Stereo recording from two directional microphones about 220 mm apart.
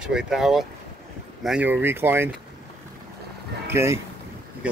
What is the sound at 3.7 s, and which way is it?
Speech, 10° right (ahead or behind).